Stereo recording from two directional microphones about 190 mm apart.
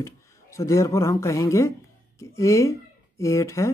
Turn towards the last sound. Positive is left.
turn(degrees=15)  # may be behind; listen again after turning